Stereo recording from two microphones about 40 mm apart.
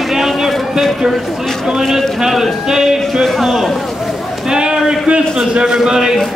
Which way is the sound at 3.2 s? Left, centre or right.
Centre.